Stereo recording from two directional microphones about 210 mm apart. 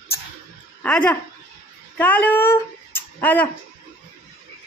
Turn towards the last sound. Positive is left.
turn(degrees=10)  # may be behind; listen again after turning